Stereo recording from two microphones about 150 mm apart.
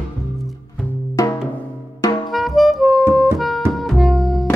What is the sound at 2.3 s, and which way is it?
Music, centre (ahead or behind).